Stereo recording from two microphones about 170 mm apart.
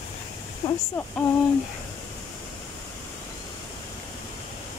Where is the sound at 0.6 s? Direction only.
20° left (ahead or behind).